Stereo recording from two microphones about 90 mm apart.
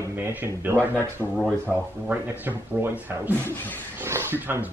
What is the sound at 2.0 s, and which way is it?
Speech, 20° right (ahead or behind).